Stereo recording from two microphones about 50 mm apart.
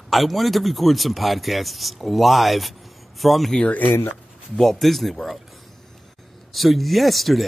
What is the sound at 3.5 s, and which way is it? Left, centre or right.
Speech, left.